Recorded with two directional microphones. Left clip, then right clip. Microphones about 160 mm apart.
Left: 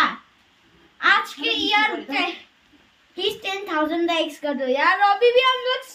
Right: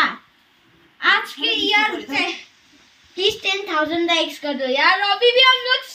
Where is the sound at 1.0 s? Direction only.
10° left (ahead or behind).